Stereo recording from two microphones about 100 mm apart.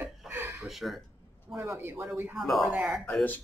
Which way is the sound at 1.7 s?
20° right (ahead or behind).